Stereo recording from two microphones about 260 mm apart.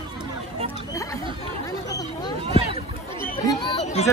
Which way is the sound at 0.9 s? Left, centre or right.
Centre.